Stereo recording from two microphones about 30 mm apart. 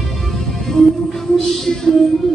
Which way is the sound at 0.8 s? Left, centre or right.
Left.